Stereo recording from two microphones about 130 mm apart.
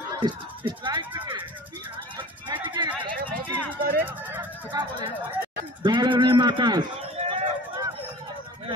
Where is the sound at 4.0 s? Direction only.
15° right (ahead or behind).